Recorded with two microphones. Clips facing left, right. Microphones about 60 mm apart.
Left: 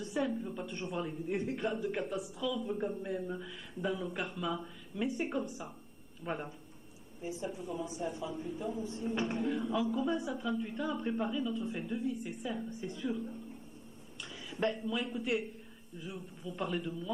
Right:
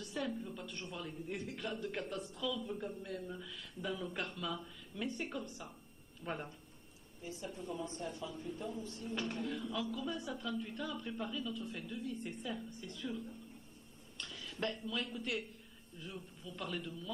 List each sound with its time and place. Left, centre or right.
0.0 s a woman's voice: centre
1.8 s a woman's voice: centre
12.1 s a woman's voice: centre
12.6 s a woman's voice: left
16.0 s a woman's voice: centre